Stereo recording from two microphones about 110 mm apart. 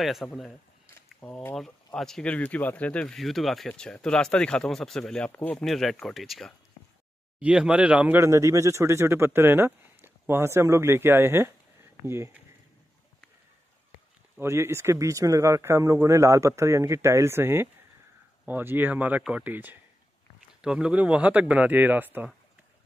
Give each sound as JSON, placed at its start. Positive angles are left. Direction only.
{"t": 0.0, "sound": "speech", "side_deg": 0}
{"t": 3.2, "sound": "speech", "side_deg": 0}
{"t": 8.2, "sound": "speech", "side_deg": -25}
{"t": 14.4, "sound": "speech", "side_deg": -25}